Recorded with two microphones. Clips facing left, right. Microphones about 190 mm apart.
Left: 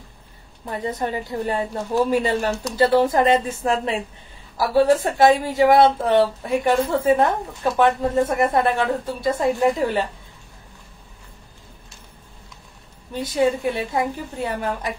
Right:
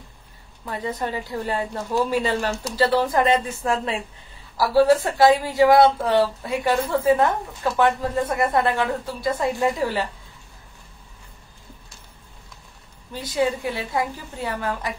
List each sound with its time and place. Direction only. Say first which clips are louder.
0.7 s a woman's voice: left 2 dB; 20° left (ahead or behind)
5.0 s a woman's voice: left 1 dB; 20° left (ahead or behind)
13.2 s a woman's voice: left 3 dB; 20° left (ahead or behind)